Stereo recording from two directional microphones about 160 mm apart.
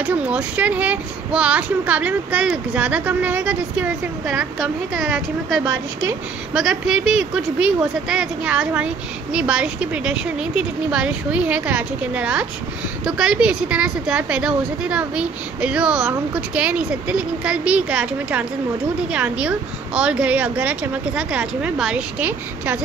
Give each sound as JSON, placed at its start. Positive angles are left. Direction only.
{"t": 0.0, "sound": "speech", "side_deg": -10}